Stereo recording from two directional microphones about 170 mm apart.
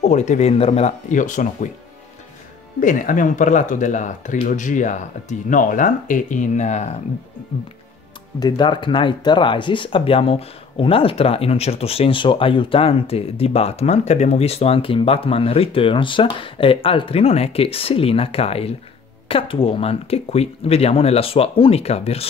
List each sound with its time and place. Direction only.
0.0 s speech: 45° left (ahead or behind)
2.8 s speech: 50° left (ahead or behind)
8.4 s speech: 25° left (ahead or behind)